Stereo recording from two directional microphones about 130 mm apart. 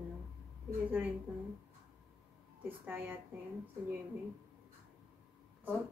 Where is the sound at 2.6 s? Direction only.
15° right (ahead or behind).